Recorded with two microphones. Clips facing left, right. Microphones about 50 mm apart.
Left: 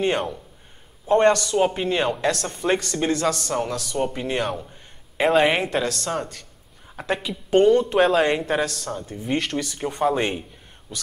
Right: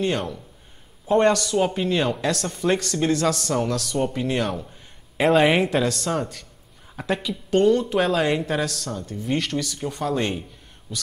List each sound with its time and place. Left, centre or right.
1.1 s speech: centre
7.2 s speech: centre
9.7 s speech: left
10.9 s speech: centre